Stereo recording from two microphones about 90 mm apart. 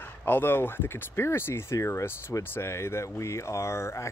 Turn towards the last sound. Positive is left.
turn(degrees=30)  # may be behind; listen again after turning